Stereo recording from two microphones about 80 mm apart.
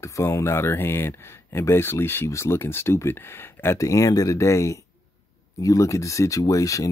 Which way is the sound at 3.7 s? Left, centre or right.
Left.